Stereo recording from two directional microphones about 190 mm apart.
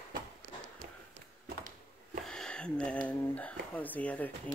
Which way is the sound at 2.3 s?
5° left (ahead or behind).